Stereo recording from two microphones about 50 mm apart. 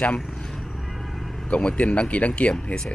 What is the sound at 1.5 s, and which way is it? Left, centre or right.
Speech, left.